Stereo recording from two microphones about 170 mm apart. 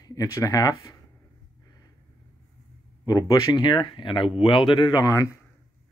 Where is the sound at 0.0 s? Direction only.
20° left (ahead or behind).